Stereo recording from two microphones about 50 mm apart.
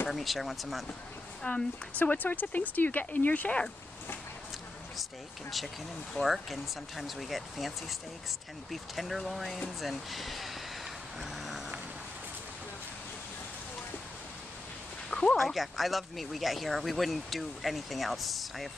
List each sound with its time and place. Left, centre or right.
0.1 s speech: centre
1.4 s speech: left
6.2 s speech: centre
8.9 s speech: centre
11.1 s vehicle: centre
15.0 s a sound: centre
15.3 s speech: centre